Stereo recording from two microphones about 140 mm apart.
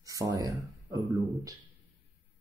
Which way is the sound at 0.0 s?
25° right (ahead or behind).